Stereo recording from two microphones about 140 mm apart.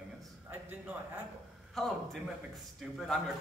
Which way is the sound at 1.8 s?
Centre (ahead or behind).